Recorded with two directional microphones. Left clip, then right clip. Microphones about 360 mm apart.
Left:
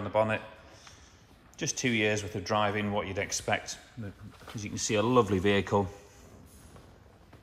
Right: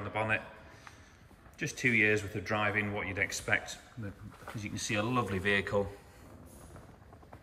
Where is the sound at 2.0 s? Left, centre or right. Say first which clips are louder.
Right 3 dB; left.